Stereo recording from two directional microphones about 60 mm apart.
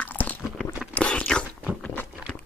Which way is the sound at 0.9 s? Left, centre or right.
Centre.